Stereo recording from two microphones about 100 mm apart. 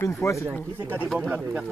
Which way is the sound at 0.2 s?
30° left (ahead or behind).